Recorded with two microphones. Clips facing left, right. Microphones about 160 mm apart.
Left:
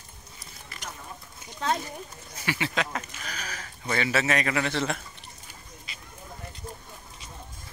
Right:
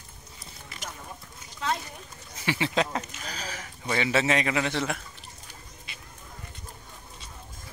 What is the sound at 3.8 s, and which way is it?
A man's voice, 15° right (ahead or behind).